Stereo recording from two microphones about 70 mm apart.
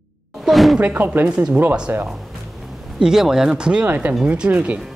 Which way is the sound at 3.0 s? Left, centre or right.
Centre.